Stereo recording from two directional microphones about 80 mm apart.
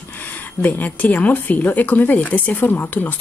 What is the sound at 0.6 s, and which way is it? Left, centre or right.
A woman's voice, left.